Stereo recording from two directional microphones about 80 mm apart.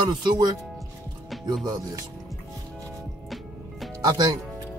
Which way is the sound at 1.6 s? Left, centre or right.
Right.